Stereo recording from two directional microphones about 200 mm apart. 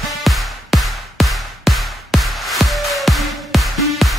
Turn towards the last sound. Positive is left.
turn(degrees=0)  # may be behind; listen again after turning